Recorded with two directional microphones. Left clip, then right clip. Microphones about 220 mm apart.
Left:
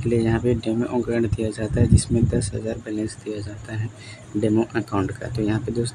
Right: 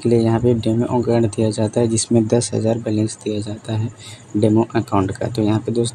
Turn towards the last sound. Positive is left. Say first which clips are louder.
# right 6 dB
turn(degrees=-15)  # may be behind; listen again after turning